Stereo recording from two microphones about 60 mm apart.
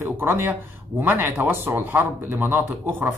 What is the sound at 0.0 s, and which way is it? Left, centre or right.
A man's voice, right.